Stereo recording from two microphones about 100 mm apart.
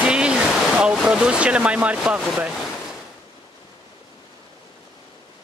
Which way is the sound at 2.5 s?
Centre (ahead or behind).